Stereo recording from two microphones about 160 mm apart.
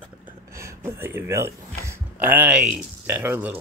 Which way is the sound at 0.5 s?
15° right (ahead or behind).